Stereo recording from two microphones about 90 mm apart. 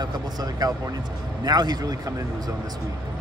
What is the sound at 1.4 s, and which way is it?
Speech, 50° right (ahead or behind).